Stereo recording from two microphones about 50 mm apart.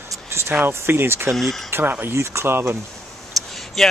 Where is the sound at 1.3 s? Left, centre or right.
Centre.